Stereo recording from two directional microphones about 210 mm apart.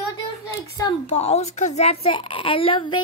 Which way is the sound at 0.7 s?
25° left (ahead or behind).